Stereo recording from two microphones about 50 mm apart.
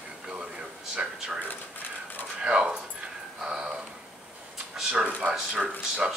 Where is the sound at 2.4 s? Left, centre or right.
Right.